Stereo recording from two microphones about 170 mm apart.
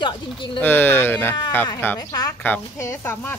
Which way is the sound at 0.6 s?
10° left (ahead or behind).